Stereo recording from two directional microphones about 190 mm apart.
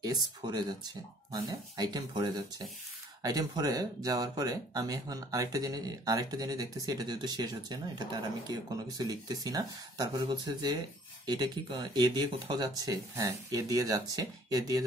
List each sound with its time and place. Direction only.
0.0 s speech: 20° right (ahead or behind)